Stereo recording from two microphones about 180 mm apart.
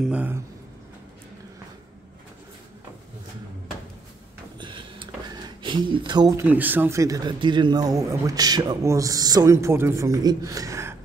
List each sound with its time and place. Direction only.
0.0 s speech: 10° right (ahead or behind)
4.6 s a sound: 25° right (ahead or behind)
6.4 s speech: 10° right (ahead or behind)